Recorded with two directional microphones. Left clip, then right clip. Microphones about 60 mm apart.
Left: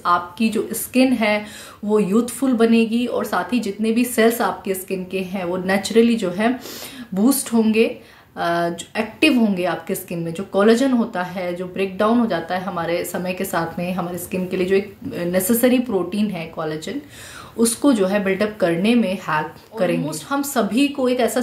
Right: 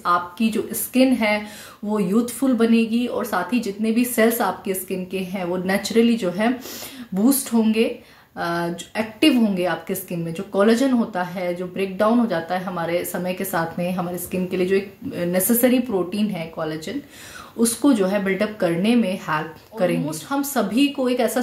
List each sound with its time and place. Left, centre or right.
0.0 s a woman's voice: left